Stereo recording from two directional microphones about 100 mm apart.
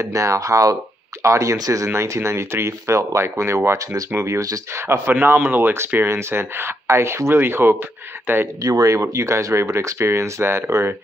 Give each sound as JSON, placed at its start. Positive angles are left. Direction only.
{"t": 0.0, "sound": "speech", "side_deg": -30}
{"t": 8.6, "sound": "speech", "side_deg": -35}